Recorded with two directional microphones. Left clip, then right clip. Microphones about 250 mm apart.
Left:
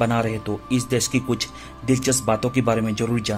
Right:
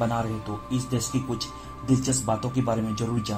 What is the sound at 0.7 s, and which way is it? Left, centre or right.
Speech, left.